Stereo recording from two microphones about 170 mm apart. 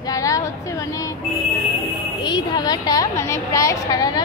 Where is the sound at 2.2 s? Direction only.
25° left (ahead or behind).